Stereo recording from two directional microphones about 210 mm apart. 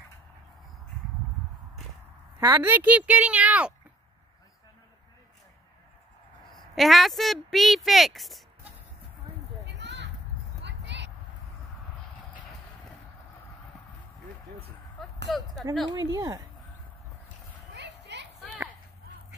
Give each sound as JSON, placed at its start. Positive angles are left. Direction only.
{"t": 2.4, "sound": "speech", "side_deg": -10}
{"t": 6.5, "sound": "speech", "side_deg": 0}
{"t": 9.7, "sound": "children playing", "side_deg": -55}
{"t": 10.6, "sound": "clip-clop", "side_deg": -55}
{"t": 15.2, "sound": "speech", "side_deg": 0}
{"t": 16.1, "sound": "speech", "side_deg": -20}
{"t": 17.7, "sound": "a sound", "side_deg": -55}